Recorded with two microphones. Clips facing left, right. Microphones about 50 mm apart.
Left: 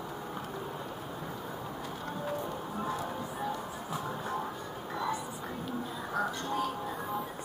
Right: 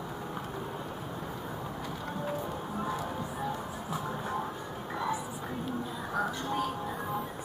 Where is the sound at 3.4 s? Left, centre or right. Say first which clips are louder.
Right 1 dB; centre.